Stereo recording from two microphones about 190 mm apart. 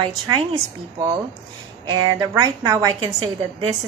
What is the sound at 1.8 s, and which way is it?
A woman's voice, 20° right (ahead or behind).